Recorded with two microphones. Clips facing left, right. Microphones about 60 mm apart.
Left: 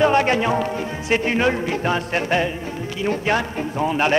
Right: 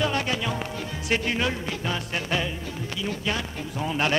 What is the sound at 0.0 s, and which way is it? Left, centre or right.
Speech, left.